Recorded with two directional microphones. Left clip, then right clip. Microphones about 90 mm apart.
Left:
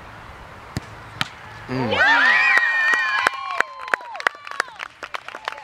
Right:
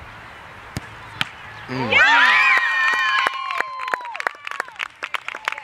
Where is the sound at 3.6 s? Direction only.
15° left (ahead or behind).